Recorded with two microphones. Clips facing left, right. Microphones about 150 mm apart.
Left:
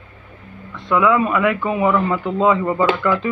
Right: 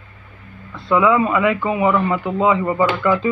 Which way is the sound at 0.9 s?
15° right (ahead or behind).